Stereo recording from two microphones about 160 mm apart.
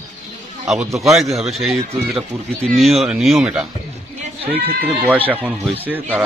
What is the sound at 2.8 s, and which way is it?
Speech, centre (ahead or behind).